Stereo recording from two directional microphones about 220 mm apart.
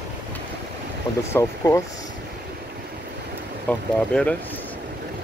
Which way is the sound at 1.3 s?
10° left (ahead or behind).